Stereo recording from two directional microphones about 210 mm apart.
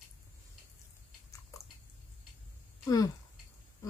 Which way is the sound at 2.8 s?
15° left (ahead or behind).